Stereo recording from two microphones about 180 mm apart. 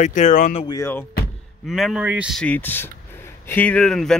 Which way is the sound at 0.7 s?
15° left (ahead or behind).